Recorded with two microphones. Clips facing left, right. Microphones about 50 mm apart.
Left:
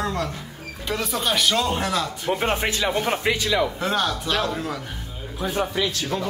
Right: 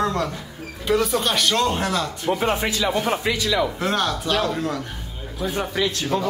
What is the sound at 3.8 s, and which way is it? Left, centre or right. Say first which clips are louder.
Speech: right 1 dB; centre.